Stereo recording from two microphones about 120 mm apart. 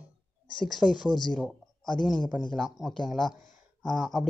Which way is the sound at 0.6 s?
Centre (ahead or behind).